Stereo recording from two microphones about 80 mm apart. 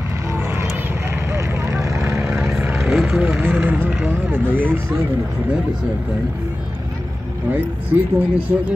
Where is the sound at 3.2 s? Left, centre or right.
Right.